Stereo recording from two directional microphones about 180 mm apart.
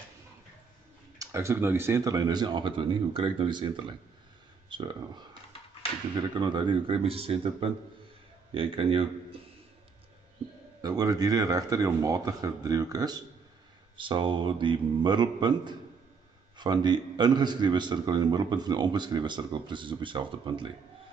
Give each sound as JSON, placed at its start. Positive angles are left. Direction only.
{"t": 1.1, "sound": "a man's voice", "side_deg": -15}
{"t": 6.2, "sound": "a man's voice", "side_deg": -25}
{"t": 10.8, "sound": "a man's voice", "side_deg": -20}